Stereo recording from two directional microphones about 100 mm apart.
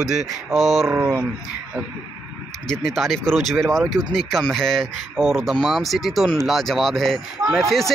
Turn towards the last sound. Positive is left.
turn(degrees=0)  # may be behind; listen again after turning